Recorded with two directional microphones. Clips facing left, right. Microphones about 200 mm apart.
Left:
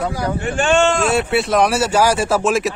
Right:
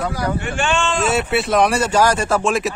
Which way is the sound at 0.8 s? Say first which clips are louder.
Left 5 dB; 65° left (ahead or behind).